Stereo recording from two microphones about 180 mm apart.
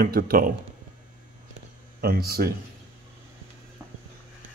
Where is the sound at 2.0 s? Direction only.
55° right (ahead or behind).